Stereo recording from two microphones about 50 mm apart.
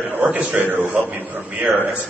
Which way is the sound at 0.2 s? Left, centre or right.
Right.